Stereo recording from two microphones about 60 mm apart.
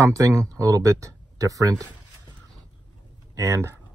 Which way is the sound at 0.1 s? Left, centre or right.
Right.